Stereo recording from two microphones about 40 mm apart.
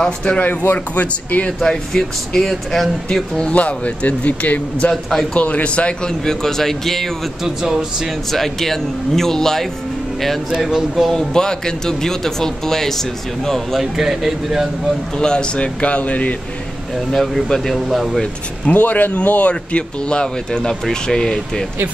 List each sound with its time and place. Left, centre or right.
0.0 s speech: left
0.4 s speech: left
1.6 s speech: centre
3.3 s a man's voice: left
6.0 s speech: centre
7.4 s a man's voice: centre
8.3 s speech: centre
10.5 s a man's voice: centre
11.3 s speech: centre
13.7 s a man's voice: centre
15.1 s a man's voice: left
17.1 s speech: centre
18.7 s speech: left
19.3 s speech: left